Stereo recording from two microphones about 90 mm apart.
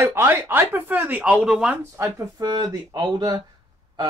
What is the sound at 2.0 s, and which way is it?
Speech, 30° right (ahead or behind).